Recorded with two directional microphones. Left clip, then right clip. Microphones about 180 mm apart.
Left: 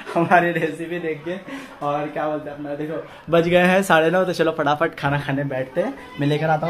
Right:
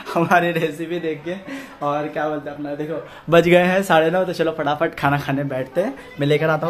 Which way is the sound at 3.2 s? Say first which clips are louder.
Right 4 dB; 55° right (ahead or behind).